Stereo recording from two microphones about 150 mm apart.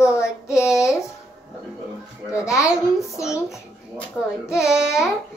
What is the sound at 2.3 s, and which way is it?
Speech, 20° left (ahead or behind).